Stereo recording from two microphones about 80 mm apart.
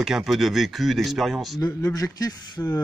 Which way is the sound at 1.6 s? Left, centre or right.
Left.